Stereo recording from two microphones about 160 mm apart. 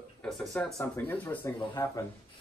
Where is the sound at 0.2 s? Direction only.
Centre (ahead or behind).